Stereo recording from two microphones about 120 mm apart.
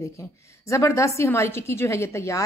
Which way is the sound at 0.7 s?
25° left (ahead or behind).